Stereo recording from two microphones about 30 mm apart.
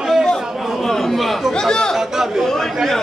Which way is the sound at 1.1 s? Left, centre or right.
Centre.